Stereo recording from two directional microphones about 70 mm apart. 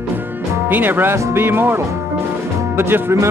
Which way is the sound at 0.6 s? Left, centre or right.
Right.